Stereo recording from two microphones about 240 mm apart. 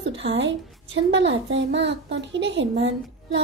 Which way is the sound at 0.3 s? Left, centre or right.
Right.